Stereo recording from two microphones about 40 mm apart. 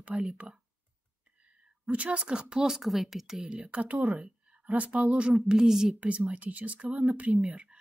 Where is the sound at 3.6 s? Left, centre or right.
Right.